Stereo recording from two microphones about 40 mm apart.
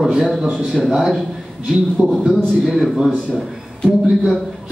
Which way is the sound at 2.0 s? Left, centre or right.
Right.